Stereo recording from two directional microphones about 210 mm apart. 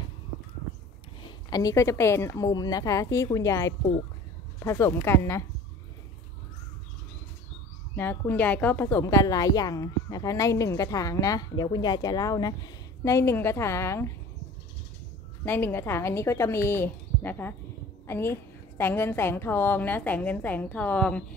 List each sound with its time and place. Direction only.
1.2 s a woman's voice: 15° left (ahead or behind)
7.9 s a woman's voice: 10° left (ahead or behind)
15.4 s a woman's voice: 10° left (ahead or behind)